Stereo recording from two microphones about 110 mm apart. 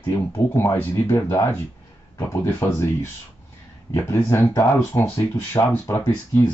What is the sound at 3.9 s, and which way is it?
Speech, 20° left (ahead or behind).